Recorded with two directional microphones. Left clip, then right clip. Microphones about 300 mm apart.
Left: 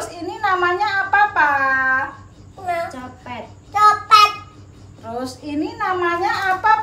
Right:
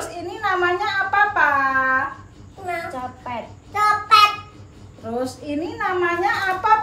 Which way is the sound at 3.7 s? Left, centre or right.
Centre.